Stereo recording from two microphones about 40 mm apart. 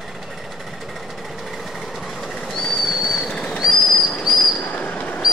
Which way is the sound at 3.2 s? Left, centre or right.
Centre.